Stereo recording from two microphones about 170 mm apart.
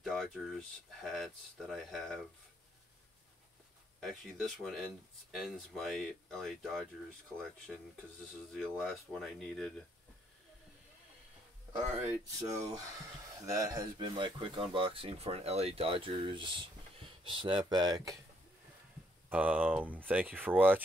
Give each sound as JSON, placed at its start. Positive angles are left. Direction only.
{"t": 0.0, "sound": "speech", "side_deg": 0}
{"t": 4.0, "sound": "speech", "side_deg": 0}
{"t": 8.5, "sound": "speech", "side_deg": 0}
{"t": 12.0, "sound": "speech", "side_deg": -15}
{"t": 19.2, "sound": "speech", "side_deg": -10}